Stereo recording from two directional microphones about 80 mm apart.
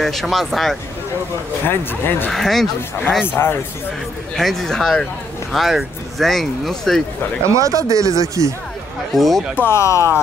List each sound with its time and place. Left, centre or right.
0.0 s speech: centre
1.7 s speech: left
2.3 s speech: centre
3.3 s speech: left
4.4 s speech: centre
7.4 s speech: right
9.1 s speech: centre
9.6 s speech: left